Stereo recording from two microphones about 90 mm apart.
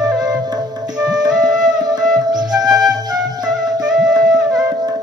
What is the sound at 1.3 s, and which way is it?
Music, 5° right (ahead or behind).